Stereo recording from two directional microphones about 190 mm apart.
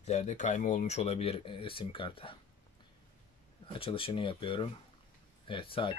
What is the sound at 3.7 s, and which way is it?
Speech, 30° left (ahead or behind).